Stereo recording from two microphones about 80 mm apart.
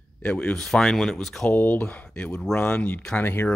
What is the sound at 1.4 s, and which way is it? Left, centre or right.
Speech, left.